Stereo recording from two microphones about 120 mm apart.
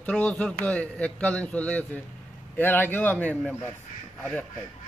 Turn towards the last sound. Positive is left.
turn(degrees=10)  # may be behind; listen again after turning